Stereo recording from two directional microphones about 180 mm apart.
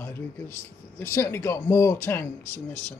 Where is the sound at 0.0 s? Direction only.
15° left (ahead or behind).